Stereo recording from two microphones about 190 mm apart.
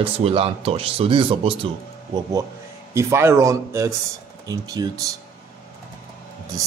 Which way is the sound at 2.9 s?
15° right (ahead or behind).